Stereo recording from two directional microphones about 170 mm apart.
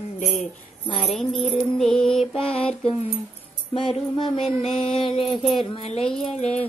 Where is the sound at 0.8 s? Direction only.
35° left (ahead or behind).